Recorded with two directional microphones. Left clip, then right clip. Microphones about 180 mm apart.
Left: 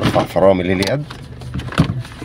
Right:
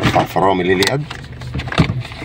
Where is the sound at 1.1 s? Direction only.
30° left (ahead or behind).